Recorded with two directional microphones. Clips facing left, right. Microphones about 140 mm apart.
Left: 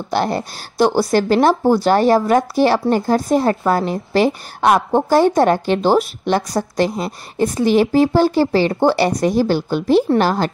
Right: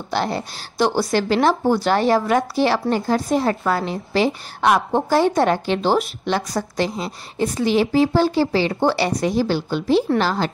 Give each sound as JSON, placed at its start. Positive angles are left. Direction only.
{"t": 0.1, "sound": "a woman's voice", "side_deg": 45}